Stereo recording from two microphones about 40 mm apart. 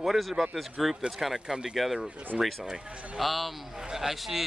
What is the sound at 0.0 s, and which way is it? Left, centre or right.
Speech, centre.